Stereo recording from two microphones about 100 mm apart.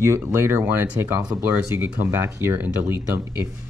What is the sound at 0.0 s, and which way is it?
Speech, 30° right (ahead or behind).